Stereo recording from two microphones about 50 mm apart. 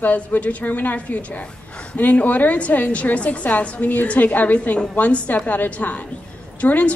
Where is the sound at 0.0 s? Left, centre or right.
Left.